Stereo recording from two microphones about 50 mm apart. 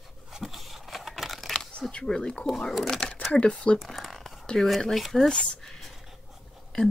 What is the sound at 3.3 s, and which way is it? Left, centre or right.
Speech, left.